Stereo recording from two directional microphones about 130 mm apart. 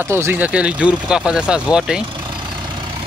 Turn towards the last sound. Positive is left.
turn(degrees=-40)  # may be behind; listen again after turning